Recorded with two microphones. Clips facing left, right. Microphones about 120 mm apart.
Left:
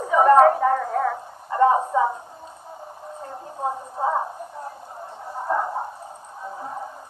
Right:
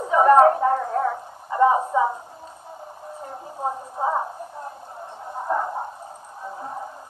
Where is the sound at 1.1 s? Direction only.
15° right (ahead or behind).